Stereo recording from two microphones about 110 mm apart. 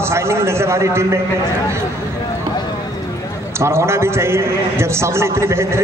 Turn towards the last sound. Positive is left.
turn(degrees=-25)  # may be behind; listen again after turning